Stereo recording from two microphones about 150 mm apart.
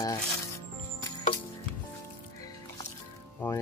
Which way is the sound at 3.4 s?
15° left (ahead or behind).